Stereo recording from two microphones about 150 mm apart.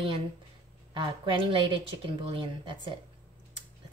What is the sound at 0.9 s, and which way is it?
A woman's voice, 35° right (ahead or behind).